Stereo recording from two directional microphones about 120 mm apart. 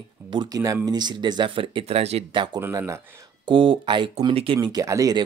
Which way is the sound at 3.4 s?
45° right (ahead or behind).